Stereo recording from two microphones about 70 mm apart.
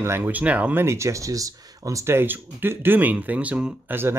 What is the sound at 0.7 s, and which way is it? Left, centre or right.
Speech, right.